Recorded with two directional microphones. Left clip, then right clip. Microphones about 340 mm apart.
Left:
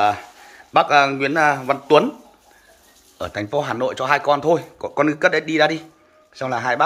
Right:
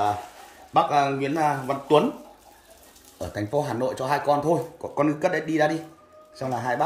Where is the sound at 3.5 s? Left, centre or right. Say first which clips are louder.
Left 4 dB; centre.